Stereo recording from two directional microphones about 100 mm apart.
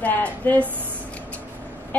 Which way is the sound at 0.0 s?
15° left (ahead or behind).